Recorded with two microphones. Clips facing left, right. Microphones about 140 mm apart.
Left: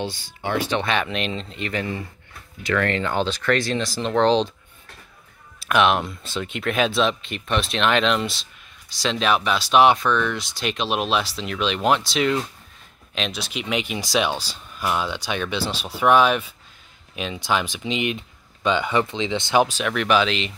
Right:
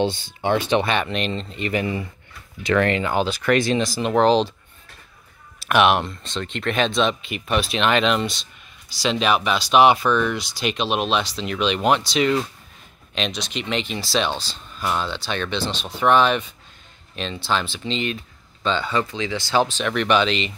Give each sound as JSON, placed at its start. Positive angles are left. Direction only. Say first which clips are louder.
{"t": 0.0, "sound": "speech", "louder": "right 6 dB", "side_deg": -25}
{"t": 0.8, "sound": "speech", "louder": "right 1 dB", "side_deg": 0}
{"t": 1.8, "sound": "speech", "louder": "right 3 dB", "side_deg": -15}
{"t": 5.6, "sound": "speech", "louder": "right 2 dB", "side_deg": -5}